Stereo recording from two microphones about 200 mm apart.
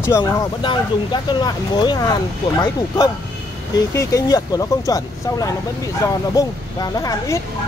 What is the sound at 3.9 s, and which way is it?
Speech, 15° left (ahead or behind).